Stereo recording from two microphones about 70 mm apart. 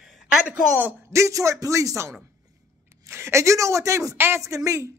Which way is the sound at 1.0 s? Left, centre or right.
Right.